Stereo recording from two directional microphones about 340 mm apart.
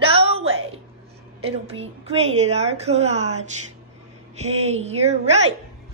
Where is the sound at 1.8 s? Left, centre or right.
Centre.